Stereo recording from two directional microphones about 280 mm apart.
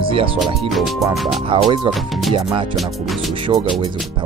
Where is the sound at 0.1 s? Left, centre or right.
Centre.